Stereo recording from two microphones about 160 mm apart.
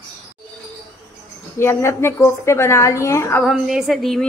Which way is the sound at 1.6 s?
15° left (ahead or behind).